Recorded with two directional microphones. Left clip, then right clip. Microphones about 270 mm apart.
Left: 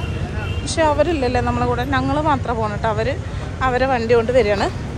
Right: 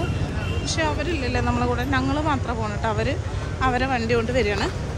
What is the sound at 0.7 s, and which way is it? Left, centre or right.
Speech, centre.